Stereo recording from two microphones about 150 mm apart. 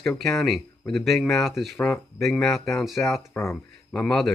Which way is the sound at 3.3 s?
15° left (ahead or behind).